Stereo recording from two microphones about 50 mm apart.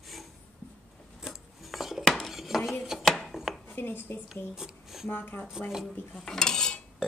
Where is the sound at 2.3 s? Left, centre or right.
Centre.